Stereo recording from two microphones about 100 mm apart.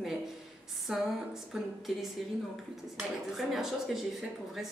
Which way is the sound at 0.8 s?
5° right (ahead or behind).